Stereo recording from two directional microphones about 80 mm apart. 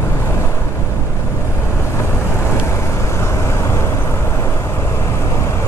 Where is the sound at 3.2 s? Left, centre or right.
Left.